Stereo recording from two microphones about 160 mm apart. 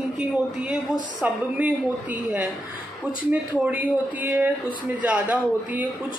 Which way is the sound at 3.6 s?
10° right (ahead or behind).